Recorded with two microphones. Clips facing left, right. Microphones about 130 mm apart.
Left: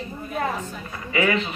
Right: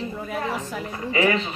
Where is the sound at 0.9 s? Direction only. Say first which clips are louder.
Right 1 dB; 30° right (ahead or behind).